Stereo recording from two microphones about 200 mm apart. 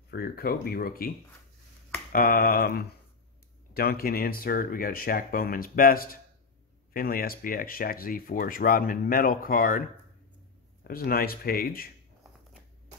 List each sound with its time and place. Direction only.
0.1 s speech: 50° left (ahead or behind)
2.1 s speech: 45° left (ahead or behind)